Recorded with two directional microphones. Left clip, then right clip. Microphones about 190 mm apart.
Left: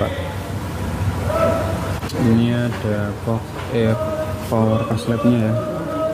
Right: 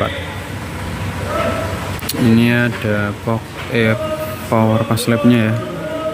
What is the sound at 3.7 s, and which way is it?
Speech, 10° right (ahead or behind).